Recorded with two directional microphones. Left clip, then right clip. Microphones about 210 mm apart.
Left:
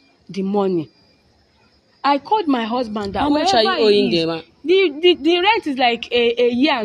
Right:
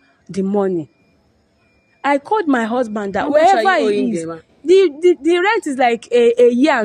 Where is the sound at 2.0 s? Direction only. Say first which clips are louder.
Right 1 dB; 25° right (ahead or behind).